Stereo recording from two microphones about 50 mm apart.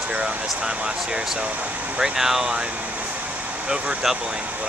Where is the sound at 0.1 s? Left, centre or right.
Centre.